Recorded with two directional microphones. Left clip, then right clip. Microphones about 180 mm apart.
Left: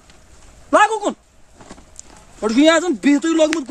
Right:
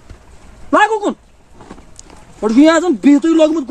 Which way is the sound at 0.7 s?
10° left (ahead or behind).